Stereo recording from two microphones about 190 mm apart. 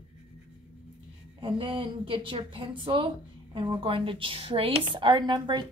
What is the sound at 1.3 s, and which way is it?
A woman's voice, 25° right (ahead or behind).